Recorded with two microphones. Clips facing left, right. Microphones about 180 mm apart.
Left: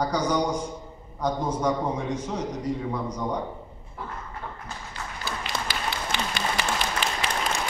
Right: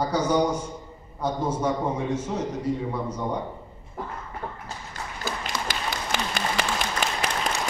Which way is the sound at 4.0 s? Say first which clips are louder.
Right 3 dB; 45° right (ahead or behind).